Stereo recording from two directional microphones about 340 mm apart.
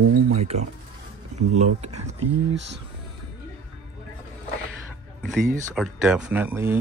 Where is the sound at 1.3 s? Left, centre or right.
Centre.